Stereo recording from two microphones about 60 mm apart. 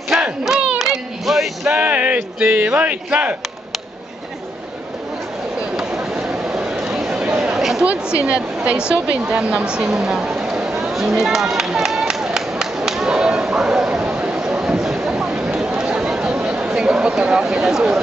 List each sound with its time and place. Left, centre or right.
0.1 s battle cry: centre
0.8 s a sound: centre
1.7 s a sound: right
2.4 s a woman's voice: right
5.8 s chatter: centre
7.8 s a woman's voice: right
9.9 s a sound: centre
15.8 s chatter: centre
16.3 s speech: centre